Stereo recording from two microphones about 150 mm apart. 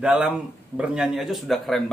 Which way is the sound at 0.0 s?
10° right (ahead or behind).